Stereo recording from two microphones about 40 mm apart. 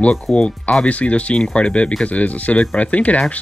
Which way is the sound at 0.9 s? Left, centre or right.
Left.